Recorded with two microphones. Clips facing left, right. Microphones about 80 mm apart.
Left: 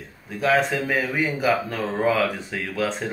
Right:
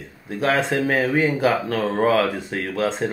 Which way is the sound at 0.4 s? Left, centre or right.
Right.